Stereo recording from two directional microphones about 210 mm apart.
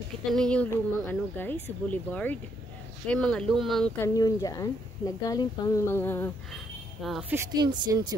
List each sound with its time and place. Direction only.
0.3 s speech: 5° left (ahead or behind)
4.1 s speech: 15° left (ahead or behind)
6.5 s a sound: centre (ahead or behind)
7.5 s speech: 20° right (ahead or behind)